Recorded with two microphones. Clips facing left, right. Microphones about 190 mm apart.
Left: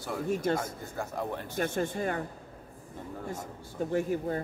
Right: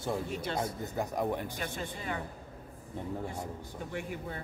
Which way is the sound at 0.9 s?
15° right (ahead or behind).